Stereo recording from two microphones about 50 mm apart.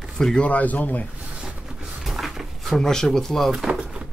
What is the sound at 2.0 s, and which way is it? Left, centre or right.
Dog, centre.